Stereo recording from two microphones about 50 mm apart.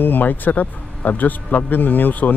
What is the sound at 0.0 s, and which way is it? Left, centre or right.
A man's voice, left.